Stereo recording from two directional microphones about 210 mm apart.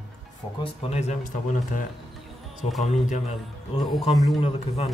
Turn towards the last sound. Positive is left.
turn(degrees=30)  # may be behind; listen again after turning